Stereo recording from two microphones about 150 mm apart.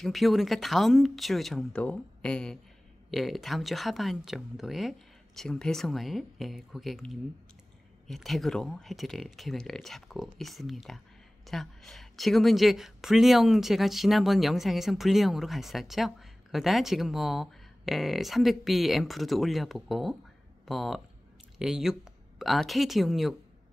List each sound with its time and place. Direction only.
0.0 s a woman's voice: centre (ahead or behind)